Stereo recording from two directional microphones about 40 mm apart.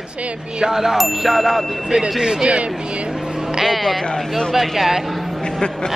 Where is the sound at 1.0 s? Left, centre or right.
Centre.